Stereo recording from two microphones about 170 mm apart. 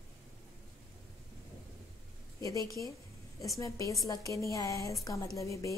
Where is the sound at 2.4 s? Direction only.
20° left (ahead or behind).